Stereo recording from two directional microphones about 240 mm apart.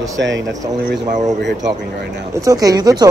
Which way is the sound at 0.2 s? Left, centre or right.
Right.